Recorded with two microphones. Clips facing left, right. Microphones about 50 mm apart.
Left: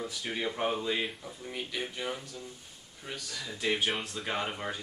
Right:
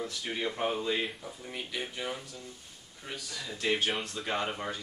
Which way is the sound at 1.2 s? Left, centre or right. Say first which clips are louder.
Left 1 dB; centre.